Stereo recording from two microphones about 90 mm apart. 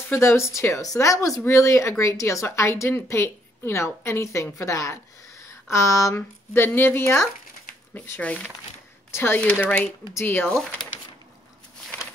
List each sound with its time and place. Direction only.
0.1 s a woman's voice: 30° left (ahead or behind)